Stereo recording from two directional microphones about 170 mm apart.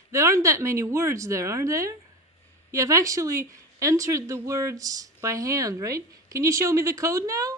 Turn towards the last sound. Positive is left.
turn(degrees=-20)  # may be behind; listen again after turning